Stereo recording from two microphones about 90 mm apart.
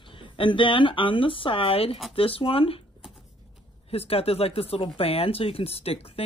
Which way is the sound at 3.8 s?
90° left.